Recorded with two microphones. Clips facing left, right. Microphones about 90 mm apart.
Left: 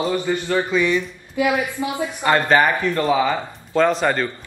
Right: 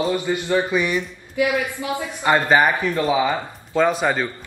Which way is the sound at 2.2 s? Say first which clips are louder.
Even; 15° right (ahead or behind).